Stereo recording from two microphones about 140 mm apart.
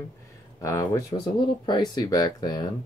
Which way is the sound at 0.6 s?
20° left (ahead or behind).